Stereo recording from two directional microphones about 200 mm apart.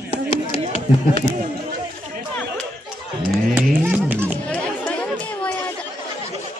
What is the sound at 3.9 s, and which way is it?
Music, 10° right (ahead or behind).